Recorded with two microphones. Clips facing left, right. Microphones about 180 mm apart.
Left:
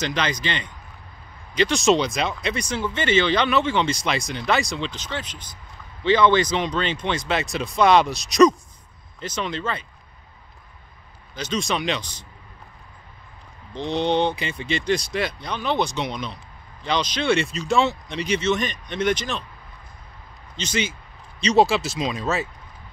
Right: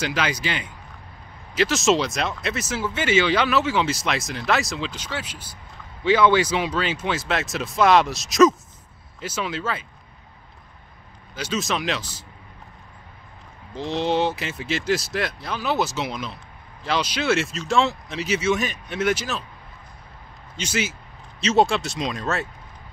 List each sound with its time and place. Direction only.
0.0 s speech: 5° right (ahead or behind)
11.3 s speech: 5° right (ahead or behind)
13.7 s speech: centre (ahead or behind)
20.5 s speech: 5° right (ahead or behind)